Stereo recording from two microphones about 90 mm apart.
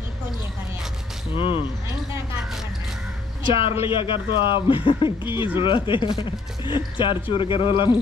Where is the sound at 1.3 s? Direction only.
75° left (ahead or behind).